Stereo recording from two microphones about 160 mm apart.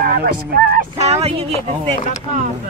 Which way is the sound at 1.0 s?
40° right (ahead or behind).